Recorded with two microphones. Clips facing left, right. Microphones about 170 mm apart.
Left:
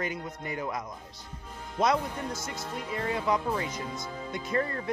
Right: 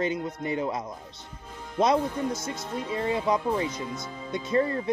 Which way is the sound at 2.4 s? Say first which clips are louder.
Right 4 dB; 20° right (ahead or behind).